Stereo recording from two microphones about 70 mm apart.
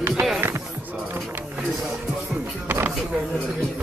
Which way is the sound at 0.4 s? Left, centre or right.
Right.